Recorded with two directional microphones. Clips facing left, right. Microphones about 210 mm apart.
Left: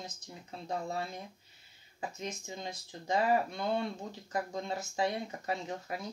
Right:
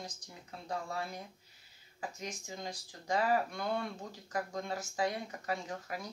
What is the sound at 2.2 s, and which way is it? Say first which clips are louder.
Speech: left 3 dB; 25° left (ahead or behind).